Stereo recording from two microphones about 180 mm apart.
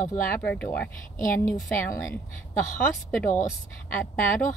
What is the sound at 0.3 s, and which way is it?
A woman's voice, 10° left (ahead or behind).